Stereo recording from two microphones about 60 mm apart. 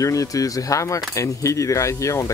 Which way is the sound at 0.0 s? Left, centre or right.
Left.